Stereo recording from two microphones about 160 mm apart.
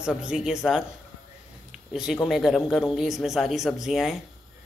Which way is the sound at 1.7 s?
5° right (ahead or behind).